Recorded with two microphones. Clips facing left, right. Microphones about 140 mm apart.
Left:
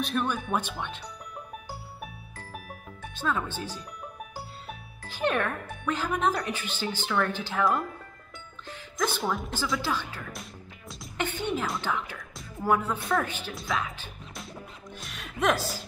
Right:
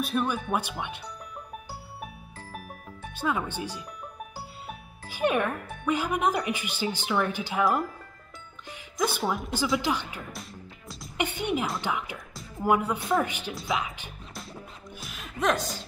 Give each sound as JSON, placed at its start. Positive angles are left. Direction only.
{"t": 0.0, "sound": "speech", "side_deg": -5}
{"t": 3.2, "sound": "speech", "side_deg": -15}
{"t": 8.6, "sound": "speech", "side_deg": -10}
{"t": 11.1, "sound": "music", "side_deg": -15}
{"t": 11.8, "sound": "speech", "side_deg": -15}
{"t": 15.0, "sound": "music", "side_deg": 0}